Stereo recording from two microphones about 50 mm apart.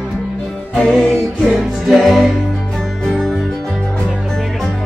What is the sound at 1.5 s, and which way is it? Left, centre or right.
Music, centre.